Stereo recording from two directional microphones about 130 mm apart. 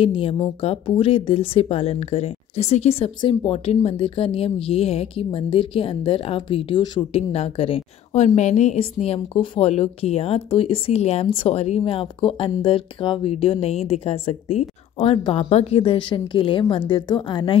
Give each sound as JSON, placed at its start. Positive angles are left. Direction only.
{"t": 0.0, "sound": "a woman's voice", "side_deg": 45}
{"t": 8.4, "sound": "a woman's voice", "side_deg": 60}